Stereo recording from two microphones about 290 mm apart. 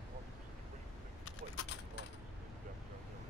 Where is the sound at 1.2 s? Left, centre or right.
Left.